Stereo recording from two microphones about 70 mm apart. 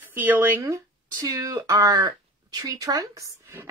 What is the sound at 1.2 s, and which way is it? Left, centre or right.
Speech, right.